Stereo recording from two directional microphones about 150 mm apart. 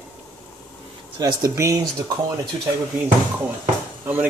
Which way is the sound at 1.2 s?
20° right (ahead or behind).